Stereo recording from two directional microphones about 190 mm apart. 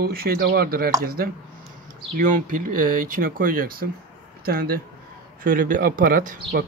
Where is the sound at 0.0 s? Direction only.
50° right (ahead or behind).